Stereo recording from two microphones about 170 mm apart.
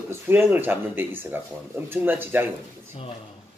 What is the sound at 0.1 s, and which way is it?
A man's voice, 15° right (ahead or behind).